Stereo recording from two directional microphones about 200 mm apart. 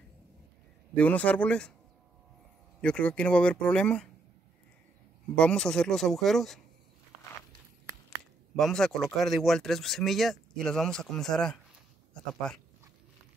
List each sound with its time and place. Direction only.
0.9 s speech: 5° left (ahead or behind)
2.8 s speech: 5° left (ahead or behind)
5.3 s speech: 5° left (ahead or behind)
8.5 s speech: centre (ahead or behind)